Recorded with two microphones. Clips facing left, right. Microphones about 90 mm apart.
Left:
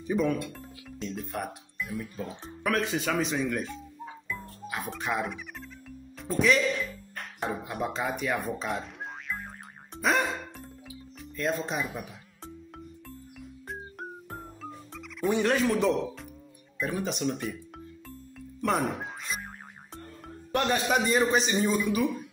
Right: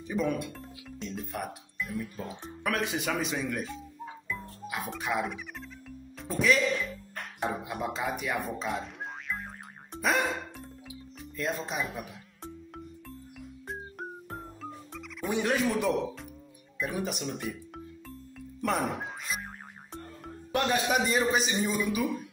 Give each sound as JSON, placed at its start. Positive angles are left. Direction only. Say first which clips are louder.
{"t": 0.6, "sound": "speech", "louder": "left 2 dB", "side_deg": 0}
{"t": 2.8, "sound": "a man's voice", "louder": "left 2 dB", "side_deg": -15}
{"t": 3.2, "sound": "a man's voice", "louder": "left 3 dB", "side_deg": -5}
{"t": 4.3, "sound": "music", "louder": "even", "side_deg": 0}
{"t": 7.4, "sound": "a man's voice", "louder": "left 1 dB", "side_deg": 0}
{"t": 10.0, "sound": "music", "louder": "left 1 dB", "side_deg": 0}
{"t": 13.7, "sound": "music", "louder": "even", "side_deg": 0}
{"t": 15.3, "sound": "a man's voice", "louder": "left 1 dB", "side_deg": -5}
{"t": 18.6, "sound": "speech", "louder": "left 2 dB", "side_deg": 0}
{"t": 20.5, "sound": "a man's voice", "louder": "left 1 dB", "side_deg": 0}